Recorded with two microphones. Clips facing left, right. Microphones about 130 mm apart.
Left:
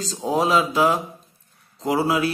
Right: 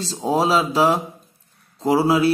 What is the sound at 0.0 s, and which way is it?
A man's voice, 30° right (ahead or behind).